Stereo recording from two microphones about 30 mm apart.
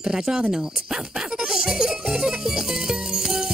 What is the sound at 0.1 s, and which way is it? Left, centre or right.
Speech, right.